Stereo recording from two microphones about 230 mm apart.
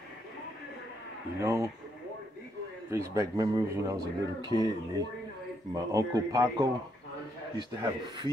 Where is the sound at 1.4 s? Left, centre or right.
Centre.